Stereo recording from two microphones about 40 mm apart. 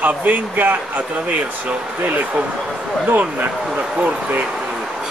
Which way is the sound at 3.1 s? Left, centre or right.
Right.